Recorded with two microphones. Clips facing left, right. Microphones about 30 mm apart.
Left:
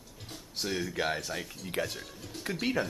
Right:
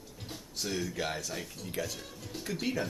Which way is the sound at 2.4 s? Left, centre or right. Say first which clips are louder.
Left 3 dB; left.